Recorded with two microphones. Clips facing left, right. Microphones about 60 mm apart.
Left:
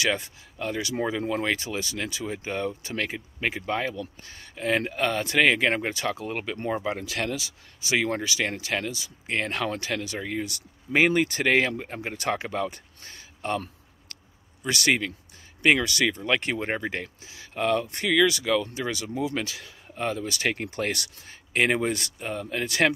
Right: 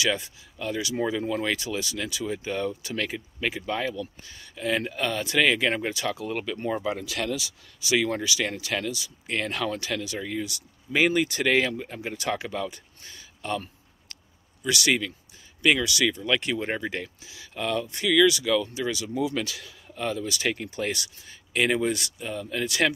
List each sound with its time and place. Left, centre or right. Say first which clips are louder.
0.0 s speech: even; left
7.0 s speech: even; left
14.6 s speech: even; left
19.0 s speech: right 1 dB; left